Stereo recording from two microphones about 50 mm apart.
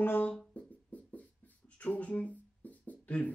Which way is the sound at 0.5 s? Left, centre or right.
Left.